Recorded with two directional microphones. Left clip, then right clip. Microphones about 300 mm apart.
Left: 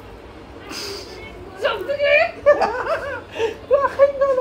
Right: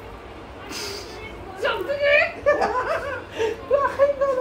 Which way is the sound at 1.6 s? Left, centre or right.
Centre.